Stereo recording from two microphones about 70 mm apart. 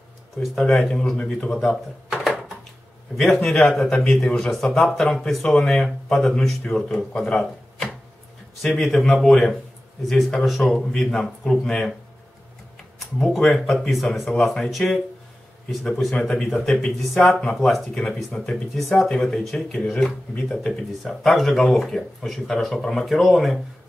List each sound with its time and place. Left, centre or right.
0.4 s speech: centre
1.1 s a man's voice: centre
1.5 s speech: centre
3.6 s a man's voice: centre
13.2 s a man's voice: centre
19.9 s a man's voice: centre
21.0 s speech: centre